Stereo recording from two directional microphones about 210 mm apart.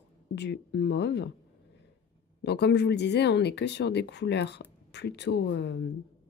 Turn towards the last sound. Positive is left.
turn(degrees=55)  # may be behind; listen again after turning